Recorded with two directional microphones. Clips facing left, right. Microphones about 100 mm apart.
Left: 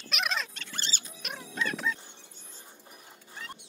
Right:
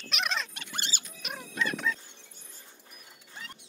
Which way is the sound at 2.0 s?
20° left (ahead or behind).